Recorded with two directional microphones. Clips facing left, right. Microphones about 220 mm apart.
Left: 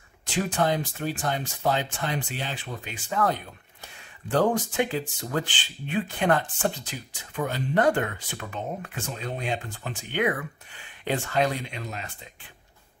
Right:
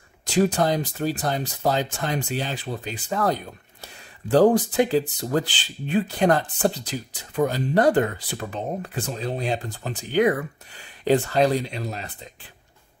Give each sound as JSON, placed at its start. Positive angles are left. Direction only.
{"t": 0.2, "sound": "speech", "side_deg": -40}